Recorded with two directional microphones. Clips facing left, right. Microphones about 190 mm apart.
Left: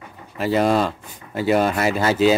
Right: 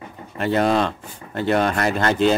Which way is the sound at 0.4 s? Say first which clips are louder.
Left 1 dB; centre (ahead or behind).